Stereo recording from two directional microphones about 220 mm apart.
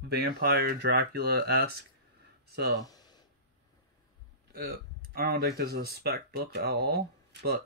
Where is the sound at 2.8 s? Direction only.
15° left (ahead or behind).